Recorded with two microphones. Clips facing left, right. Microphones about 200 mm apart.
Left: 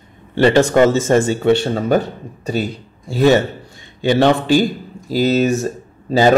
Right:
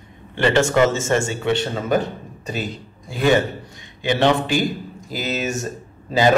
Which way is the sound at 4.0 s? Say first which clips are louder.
Left 4 dB; 35° left (ahead or behind).